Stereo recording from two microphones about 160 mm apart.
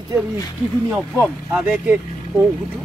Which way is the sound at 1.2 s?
5° right (ahead or behind).